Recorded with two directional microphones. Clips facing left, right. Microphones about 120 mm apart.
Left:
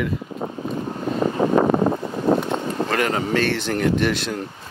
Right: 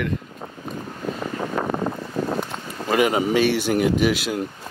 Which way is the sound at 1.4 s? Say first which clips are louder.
Left 8 dB; 45° left (ahead or behind).